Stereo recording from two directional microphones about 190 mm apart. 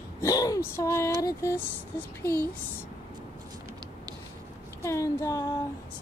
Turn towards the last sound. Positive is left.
turn(degrees=20)  # may be behind; listen again after turning